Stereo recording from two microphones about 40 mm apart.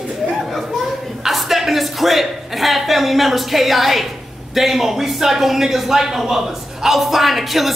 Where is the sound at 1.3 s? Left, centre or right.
Centre.